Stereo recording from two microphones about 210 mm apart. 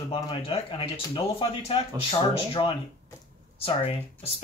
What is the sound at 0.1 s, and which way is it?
Speech, 25° left (ahead or behind).